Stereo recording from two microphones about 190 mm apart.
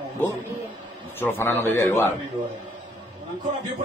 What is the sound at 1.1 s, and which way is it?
Speech, 10° left (ahead or behind).